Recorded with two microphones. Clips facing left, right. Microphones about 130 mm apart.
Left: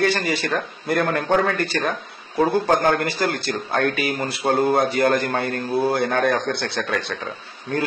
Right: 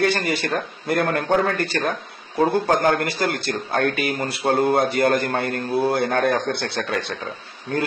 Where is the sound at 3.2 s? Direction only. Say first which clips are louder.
Even; 55° right (ahead or behind).